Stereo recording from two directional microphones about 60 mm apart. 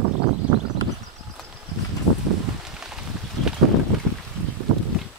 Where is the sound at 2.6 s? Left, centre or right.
Centre.